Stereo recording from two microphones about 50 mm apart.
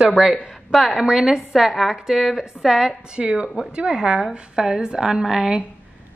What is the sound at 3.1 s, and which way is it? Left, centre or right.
Speech, right.